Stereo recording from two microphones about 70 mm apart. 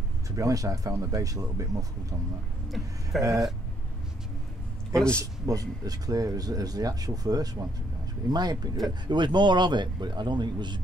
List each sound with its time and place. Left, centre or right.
0.4 s speech: right
3.2 s speech: right
4.9 s speech: centre
5.2 s speech: right
8.3 s speech: right
9.0 s speech: right